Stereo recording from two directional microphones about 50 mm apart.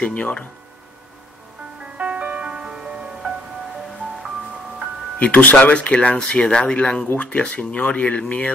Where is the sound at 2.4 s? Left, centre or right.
Centre.